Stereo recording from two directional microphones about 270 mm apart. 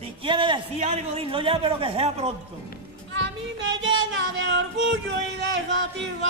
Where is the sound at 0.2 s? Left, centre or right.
Centre.